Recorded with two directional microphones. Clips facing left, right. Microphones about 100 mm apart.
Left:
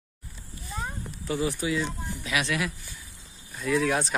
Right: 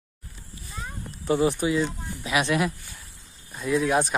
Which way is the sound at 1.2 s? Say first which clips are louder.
Right 6 dB; 25° right (ahead or behind).